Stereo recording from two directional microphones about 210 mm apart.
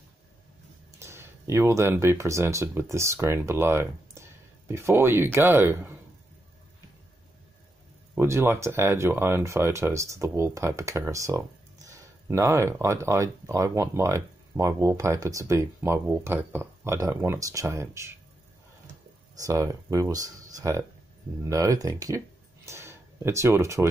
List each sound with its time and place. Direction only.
0.9 s speech: 10° right (ahead or behind)
8.1 s speech: 10° right (ahead or behind)
19.4 s speech: 15° right (ahead or behind)